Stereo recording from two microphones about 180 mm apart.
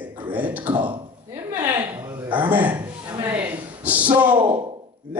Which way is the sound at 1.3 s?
20° right (ahead or behind).